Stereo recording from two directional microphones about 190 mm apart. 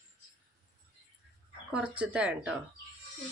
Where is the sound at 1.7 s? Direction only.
5° right (ahead or behind).